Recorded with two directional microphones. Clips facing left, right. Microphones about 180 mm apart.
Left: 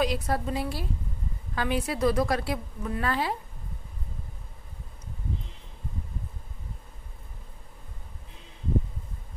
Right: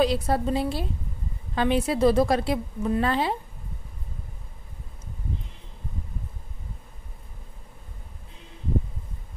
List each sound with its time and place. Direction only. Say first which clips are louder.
0.0 s a woman's voice: right 5 dB; 30° right (ahead or behind)